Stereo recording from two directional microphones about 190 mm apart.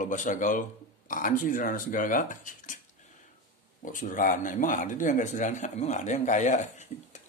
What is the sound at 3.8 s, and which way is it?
Speech, 45° left (ahead or behind).